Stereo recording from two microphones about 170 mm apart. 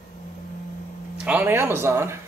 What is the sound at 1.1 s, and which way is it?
Speech, 10° right (ahead or behind).